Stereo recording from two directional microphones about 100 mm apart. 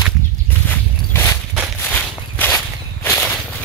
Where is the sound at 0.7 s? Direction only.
25° left (ahead or behind).